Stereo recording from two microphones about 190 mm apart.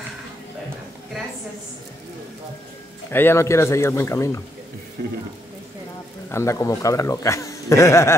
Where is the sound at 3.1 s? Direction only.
10° left (ahead or behind).